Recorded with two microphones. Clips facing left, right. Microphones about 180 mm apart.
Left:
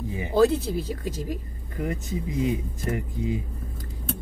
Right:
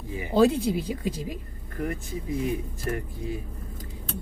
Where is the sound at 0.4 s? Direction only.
15° right (ahead or behind).